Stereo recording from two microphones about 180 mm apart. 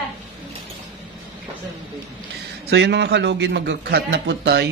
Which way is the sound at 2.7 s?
70° right (ahead or behind).